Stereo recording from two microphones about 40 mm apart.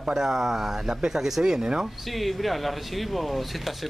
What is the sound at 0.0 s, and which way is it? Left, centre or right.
Speech, centre.